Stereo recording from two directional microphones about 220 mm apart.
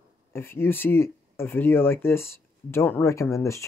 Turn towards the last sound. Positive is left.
turn(degrees=15)  # may be behind; listen again after turning